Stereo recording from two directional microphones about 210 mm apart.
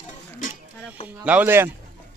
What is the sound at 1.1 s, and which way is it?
Speech, 5° right (ahead or behind).